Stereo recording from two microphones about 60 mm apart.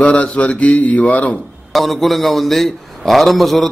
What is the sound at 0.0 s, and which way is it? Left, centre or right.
A man's voice, centre.